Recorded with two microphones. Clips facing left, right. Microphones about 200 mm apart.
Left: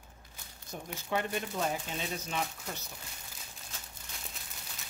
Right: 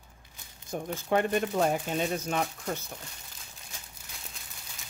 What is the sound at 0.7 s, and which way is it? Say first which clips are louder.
Speech: right 7 dB; 60° right (ahead or behind).